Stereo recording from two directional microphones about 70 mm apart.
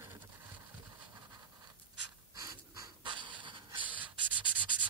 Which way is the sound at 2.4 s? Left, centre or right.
Right.